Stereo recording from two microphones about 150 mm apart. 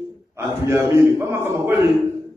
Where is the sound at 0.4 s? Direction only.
20° right (ahead or behind).